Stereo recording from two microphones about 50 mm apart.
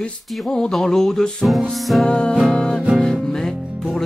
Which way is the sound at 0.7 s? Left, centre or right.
Centre.